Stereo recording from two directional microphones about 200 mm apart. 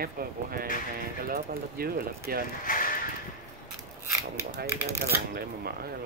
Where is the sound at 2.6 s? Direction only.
45° left (ahead or behind).